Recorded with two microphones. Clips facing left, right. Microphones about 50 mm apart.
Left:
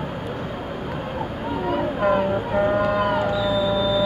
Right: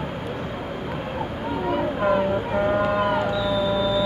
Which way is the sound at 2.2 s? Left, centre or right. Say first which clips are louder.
Left 1 dB; centre.